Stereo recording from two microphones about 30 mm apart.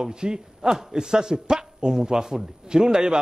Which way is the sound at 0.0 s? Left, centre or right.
Right.